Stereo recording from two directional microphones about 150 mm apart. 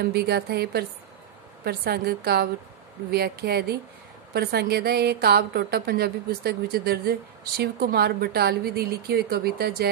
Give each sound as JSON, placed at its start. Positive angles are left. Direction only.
{"t": 0.0, "sound": "a woman's voice", "side_deg": -90}